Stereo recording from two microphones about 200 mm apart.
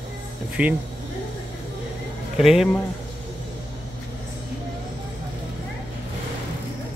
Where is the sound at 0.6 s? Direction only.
5° right (ahead or behind).